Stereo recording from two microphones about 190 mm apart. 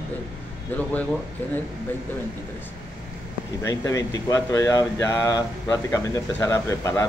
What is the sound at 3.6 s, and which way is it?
Speech, 20° left (ahead or behind).